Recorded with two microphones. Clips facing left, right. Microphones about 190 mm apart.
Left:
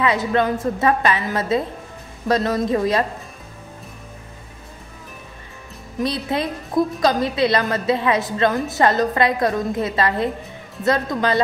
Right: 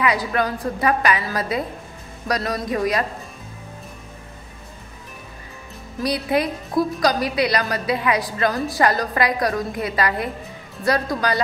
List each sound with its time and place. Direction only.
0.0 s a woman's voice: 25° left (ahead or behind)
5.9 s a woman's voice: 25° left (ahead or behind)